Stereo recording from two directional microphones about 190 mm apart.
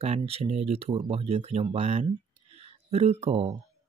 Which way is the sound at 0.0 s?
35° right (ahead or behind).